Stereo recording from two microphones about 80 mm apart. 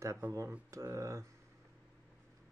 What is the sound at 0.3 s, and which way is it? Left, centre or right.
Speech, right.